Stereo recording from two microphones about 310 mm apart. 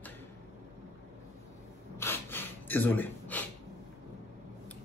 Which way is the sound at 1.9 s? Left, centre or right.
Centre.